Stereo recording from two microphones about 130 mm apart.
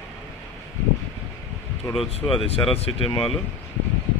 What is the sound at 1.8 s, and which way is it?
Speech, 30° left (ahead or behind).